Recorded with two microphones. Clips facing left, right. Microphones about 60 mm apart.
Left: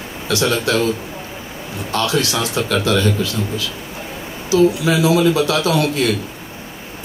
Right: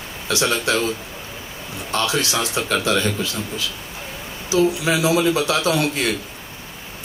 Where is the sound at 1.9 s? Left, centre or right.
Right.